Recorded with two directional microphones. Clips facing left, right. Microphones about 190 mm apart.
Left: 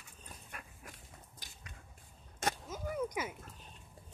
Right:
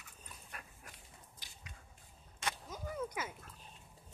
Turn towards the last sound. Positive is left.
turn(degrees=15)  # may be behind; listen again after turning